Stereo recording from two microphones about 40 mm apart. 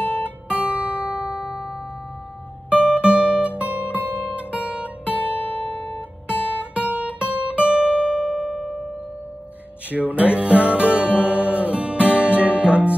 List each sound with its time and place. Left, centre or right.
0.0 s guitar: left
0.6 s music: right
2.7 s guitar: right
5.1 s guitar: left
6.7 s guitar: right; by 8.5 s centre
9.8 s music: right